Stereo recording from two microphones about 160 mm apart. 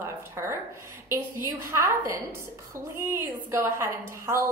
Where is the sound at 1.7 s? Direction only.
15° right (ahead or behind).